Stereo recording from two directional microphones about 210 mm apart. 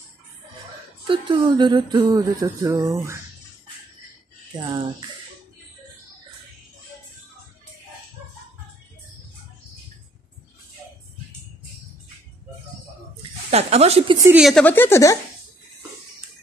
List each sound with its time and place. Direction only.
1.0 s speech: 25° right (ahead or behind)
4.6 s speech: 20° right (ahead or behind)
13.5 s speech: 30° right (ahead or behind)
14.1 s speech: 15° right (ahead or behind)
14.4 s a woman's voice: 5° left (ahead or behind)